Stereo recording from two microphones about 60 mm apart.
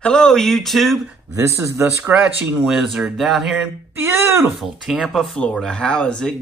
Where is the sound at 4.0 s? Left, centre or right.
Right.